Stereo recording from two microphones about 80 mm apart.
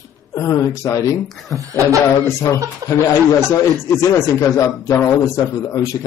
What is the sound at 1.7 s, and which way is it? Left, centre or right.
Speech, right.